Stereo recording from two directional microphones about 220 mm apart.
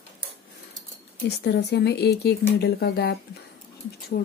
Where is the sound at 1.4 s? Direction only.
50° left (ahead or behind).